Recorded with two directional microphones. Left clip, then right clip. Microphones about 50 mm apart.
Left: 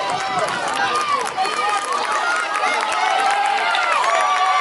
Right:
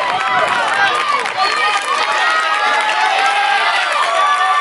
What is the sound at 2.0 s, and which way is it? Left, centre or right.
Run, right.